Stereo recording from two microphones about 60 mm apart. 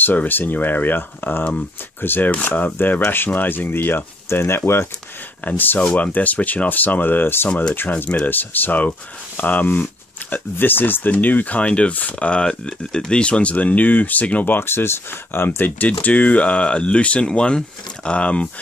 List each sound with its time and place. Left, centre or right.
0.0 s speech: left
5.4 s speech: left